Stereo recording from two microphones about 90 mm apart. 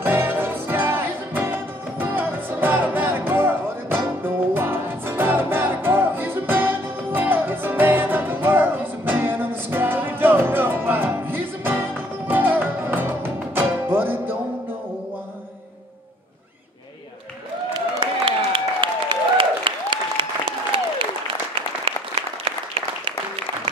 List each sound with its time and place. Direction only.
0.0 s music: 25° right (ahead or behind)
17.7 s applause: 60° right (ahead or behind)
21.9 s applause: 90° right